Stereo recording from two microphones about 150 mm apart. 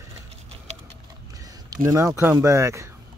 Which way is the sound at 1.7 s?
20° right (ahead or behind).